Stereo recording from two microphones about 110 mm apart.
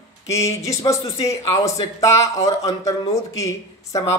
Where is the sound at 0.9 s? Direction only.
30° left (ahead or behind).